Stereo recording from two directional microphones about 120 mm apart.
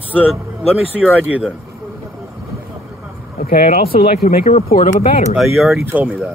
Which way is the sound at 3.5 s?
65° left (ahead or behind).